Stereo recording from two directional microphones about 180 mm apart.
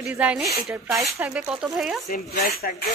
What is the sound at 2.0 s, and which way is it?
Speech, 50° left (ahead or behind).